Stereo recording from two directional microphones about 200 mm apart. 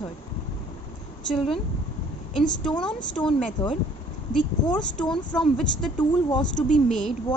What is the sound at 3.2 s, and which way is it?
Speech, 5° left (ahead or behind).